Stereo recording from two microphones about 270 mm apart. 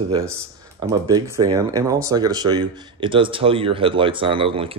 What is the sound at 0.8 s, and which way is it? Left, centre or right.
Speech, centre.